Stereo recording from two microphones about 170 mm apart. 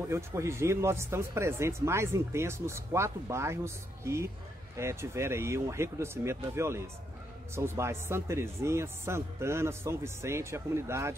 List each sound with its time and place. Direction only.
0.1 s speech: 15° right (ahead or behind)